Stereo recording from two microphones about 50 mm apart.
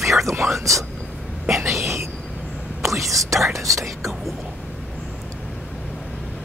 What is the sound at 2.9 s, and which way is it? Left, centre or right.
Speech, right.